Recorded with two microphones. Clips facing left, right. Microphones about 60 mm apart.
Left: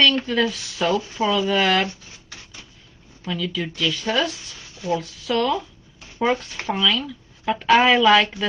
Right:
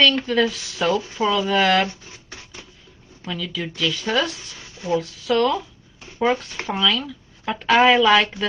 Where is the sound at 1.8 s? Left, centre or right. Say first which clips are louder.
Right 1 dB; right.